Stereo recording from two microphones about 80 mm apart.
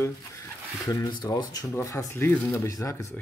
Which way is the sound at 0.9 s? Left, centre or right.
Left.